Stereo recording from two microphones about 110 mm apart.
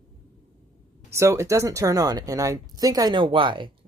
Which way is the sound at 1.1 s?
25° right (ahead or behind).